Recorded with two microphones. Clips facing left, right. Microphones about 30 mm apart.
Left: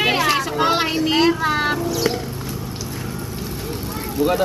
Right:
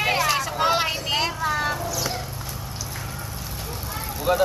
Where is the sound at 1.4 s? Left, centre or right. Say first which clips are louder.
Left 4 dB; left.